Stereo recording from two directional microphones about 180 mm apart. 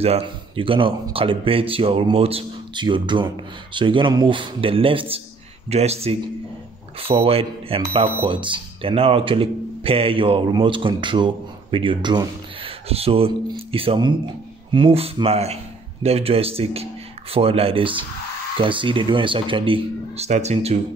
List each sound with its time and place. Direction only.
0.0 s speech: 30° right (ahead or behind)